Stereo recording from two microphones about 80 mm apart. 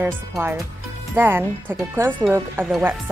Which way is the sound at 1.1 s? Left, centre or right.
Right.